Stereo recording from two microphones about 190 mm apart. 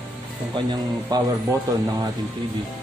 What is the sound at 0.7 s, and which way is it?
A man's voice, 20° right (ahead or behind).